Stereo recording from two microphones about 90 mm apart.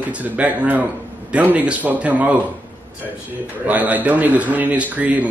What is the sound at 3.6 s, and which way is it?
Speech, 20° right (ahead or behind).